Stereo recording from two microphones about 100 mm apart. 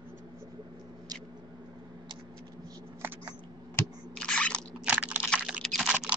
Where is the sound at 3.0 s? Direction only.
20° right (ahead or behind).